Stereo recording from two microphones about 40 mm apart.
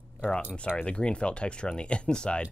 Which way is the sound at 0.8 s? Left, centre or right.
Left.